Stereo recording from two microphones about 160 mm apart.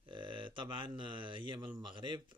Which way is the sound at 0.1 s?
30° right (ahead or behind).